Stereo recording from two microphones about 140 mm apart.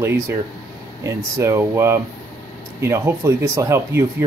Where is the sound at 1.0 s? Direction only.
20° right (ahead or behind).